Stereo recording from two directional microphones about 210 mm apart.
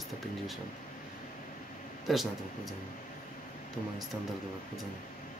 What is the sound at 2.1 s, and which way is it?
Speech, centre (ahead or behind).